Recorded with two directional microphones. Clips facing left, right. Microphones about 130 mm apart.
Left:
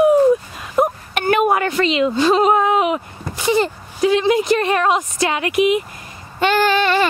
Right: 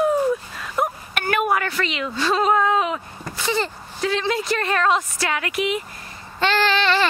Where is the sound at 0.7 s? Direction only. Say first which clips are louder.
Left 6 dB; 20° left (ahead or behind).